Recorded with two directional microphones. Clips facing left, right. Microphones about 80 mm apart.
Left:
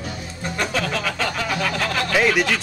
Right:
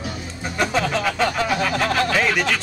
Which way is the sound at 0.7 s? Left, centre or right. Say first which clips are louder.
Right 3 dB; centre.